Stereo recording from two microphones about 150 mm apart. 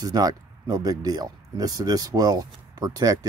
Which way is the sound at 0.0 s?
25° right (ahead or behind).